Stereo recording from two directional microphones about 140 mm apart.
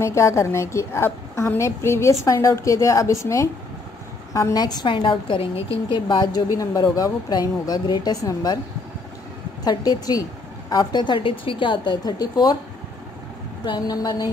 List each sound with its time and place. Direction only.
0.0 s a woman's voice: 20° left (ahead or behind)
4.3 s a woman's voice: 20° left (ahead or behind)
9.7 s a woman's voice: 25° left (ahead or behind)
13.7 s a woman's voice: 30° left (ahead or behind)